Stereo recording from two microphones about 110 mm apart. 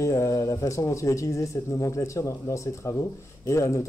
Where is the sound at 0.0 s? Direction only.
30° left (ahead or behind).